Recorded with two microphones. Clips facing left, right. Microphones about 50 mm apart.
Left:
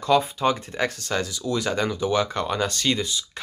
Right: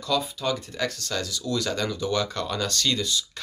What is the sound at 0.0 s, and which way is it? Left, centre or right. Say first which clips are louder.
Speech: left 6 dB; left.